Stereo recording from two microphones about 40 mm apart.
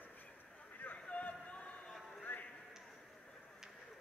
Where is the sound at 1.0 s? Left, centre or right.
Left.